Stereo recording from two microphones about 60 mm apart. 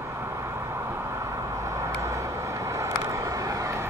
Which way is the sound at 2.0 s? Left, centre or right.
Right.